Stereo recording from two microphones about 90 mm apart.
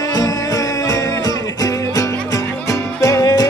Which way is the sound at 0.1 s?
45° left (ahead or behind).